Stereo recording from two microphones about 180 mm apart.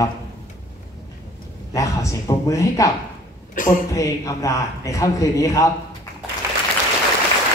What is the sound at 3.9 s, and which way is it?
A man's voice, 15° left (ahead or behind).